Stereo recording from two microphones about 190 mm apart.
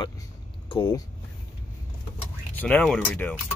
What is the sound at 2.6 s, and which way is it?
Speech, 5° left (ahead or behind).